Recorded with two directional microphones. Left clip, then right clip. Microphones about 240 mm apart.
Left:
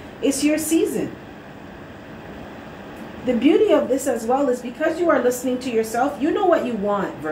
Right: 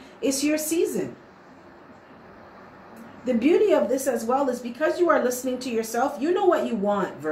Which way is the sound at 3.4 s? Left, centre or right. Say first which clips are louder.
Left 3 dB; centre.